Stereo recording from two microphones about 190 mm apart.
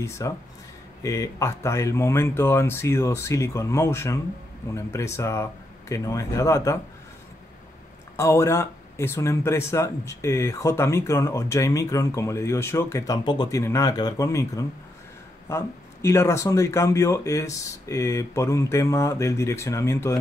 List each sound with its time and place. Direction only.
0.0 s speech: 15° left (ahead or behind)
8.2 s speech: 15° left (ahead or behind)